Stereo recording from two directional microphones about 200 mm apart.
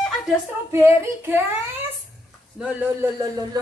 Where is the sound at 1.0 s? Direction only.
10° right (ahead or behind).